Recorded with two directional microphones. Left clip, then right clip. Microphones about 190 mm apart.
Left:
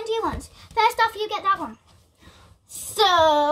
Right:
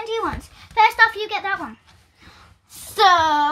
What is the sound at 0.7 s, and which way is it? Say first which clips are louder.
Speech: right 5 dB; 25° left (ahead or behind).